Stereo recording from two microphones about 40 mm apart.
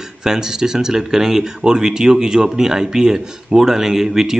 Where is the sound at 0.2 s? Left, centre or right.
Centre.